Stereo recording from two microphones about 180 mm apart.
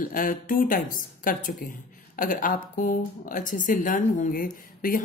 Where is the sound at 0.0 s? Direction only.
50° left (ahead or behind).